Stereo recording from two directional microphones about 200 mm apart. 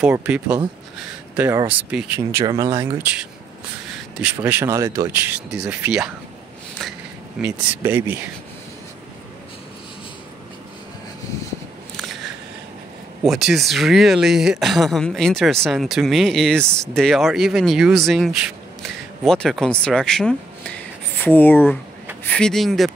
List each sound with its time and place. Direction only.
0.1 s speech: 5° right (ahead or behind)
2.7 s speech: 25° right (ahead or behind)
3.0 s speech: 5° right (ahead or behind)
7.3 s speech: 5° right (ahead or behind)
12.0 s a sound: centre (ahead or behind)
13.2 s speech: centre (ahead or behind)